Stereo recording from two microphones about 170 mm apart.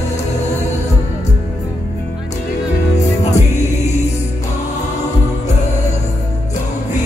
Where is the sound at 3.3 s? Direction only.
45° left (ahead or behind).